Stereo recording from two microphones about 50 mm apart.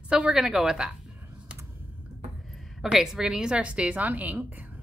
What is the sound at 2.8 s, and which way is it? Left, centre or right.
Speech, centre.